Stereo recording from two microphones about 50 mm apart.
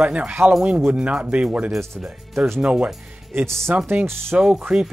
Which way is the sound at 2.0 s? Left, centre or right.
Centre.